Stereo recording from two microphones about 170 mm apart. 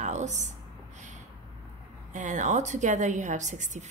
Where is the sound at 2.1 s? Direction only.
45° right (ahead or behind).